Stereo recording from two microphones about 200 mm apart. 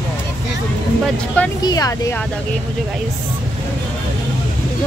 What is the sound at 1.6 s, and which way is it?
Speech, 20° left (ahead or behind).